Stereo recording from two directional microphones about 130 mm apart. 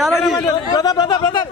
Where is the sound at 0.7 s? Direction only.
30° left (ahead or behind).